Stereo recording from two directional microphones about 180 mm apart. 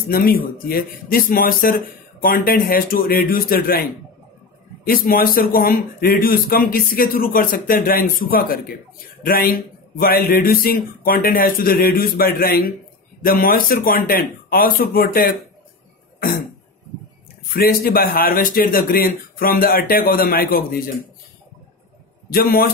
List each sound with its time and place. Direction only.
0.1 s speech: 55° left (ahead or behind)
4.8 s a man's voice: 55° left (ahead or behind)
17.5 s speech: 55° left (ahead or behind)
22.3 s speech: 55° left (ahead or behind)